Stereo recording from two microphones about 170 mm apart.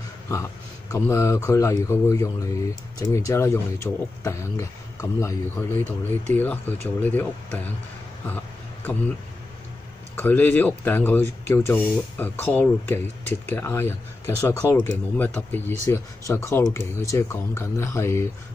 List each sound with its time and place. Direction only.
0.9 s speech: 15° left (ahead or behind)
10.1 s speech: 10° left (ahead or behind)